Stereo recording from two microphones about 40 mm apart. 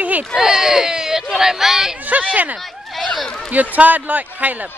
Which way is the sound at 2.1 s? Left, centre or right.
Right.